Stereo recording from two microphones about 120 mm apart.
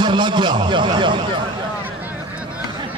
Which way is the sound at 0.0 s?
40° right (ahead or behind).